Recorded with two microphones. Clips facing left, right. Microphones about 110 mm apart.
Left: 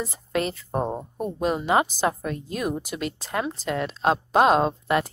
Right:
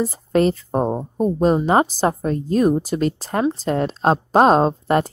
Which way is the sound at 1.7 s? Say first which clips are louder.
Right 5 dB; 35° right (ahead or behind).